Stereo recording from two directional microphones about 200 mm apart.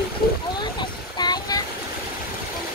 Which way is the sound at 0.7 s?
20° left (ahead or behind).